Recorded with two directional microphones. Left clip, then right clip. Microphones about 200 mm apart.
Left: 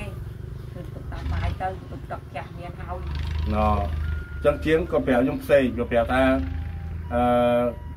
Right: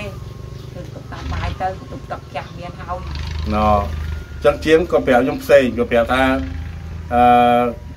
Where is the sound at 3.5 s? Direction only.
20° right (ahead or behind).